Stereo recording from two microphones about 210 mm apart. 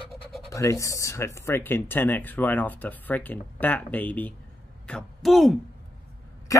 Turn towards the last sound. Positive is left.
turn(degrees=15)  # may be behind; listen again after turning